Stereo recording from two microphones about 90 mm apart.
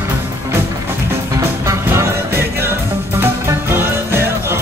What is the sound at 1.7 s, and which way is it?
Music, 30° right (ahead or behind).